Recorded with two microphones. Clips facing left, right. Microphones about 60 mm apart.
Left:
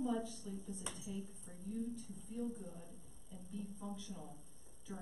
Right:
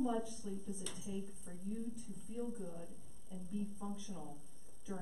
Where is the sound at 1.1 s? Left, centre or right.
Centre.